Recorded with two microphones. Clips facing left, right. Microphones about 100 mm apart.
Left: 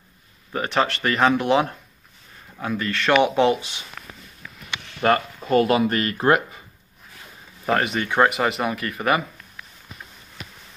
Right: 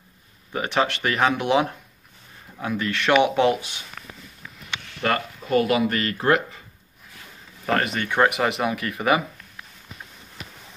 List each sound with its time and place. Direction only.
0.5 s speech: 5° right (ahead or behind)
5.0 s speech: 30° left (ahead or behind)
7.8 s speech: 5° left (ahead or behind)